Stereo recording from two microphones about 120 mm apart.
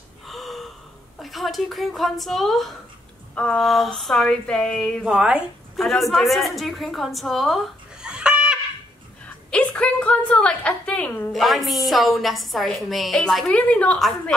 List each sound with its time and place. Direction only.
0.3 s gasp: centre (ahead or behind)
1.2 s a woman's voice: centre (ahead or behind)
5.0 s a woman's voice: 5° right (ahead or behind)
9.5 s a sound: 10° left (ahead or behind)
11.3 s a woman's voice: centre (ahead or behind)